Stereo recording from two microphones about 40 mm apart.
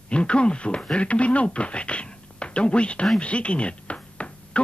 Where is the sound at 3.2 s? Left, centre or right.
Left.